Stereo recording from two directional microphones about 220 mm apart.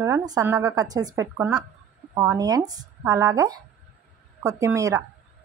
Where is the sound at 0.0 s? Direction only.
15° right (ahead or behind).